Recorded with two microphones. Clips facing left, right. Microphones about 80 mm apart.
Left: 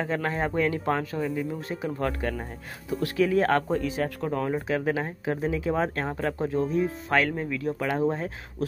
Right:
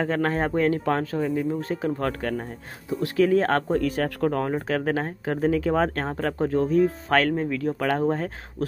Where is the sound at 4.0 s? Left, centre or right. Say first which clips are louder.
Right 4 dB; right.